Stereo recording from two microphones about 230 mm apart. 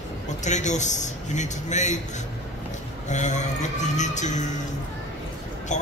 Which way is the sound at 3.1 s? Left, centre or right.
Left.